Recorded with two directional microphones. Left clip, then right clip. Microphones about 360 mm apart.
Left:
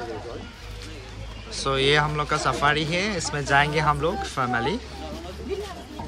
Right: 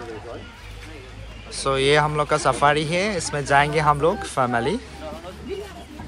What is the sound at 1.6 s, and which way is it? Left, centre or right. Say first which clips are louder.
Speech: right 3 dB; centre.